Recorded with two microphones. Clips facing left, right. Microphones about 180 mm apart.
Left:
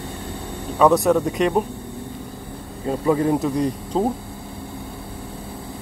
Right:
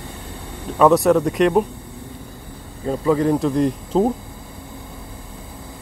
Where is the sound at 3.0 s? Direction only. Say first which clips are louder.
Right 1 dB; 10° left (ahead or behind).